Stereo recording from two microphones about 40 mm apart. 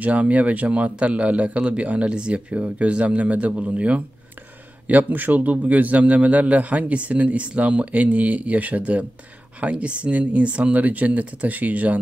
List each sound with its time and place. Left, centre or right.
0.0 s a man's voice: right
4.8 s a man's voice: right